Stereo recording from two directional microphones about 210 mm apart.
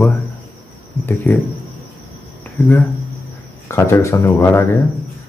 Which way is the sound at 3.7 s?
15° left (ahead or behind).